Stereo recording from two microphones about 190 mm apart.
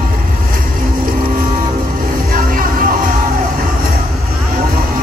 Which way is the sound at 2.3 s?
45° right (ahead or behind).